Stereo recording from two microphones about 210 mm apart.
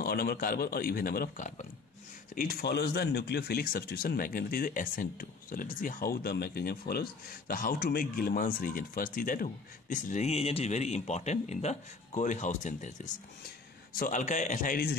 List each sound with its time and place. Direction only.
0.0 s a man's voice: 45° left (ahead or behind)